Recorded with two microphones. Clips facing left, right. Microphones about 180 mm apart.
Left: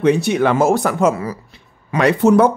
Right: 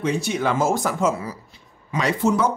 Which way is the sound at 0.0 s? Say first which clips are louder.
Left 8 dB; 65° left (ahead or behind).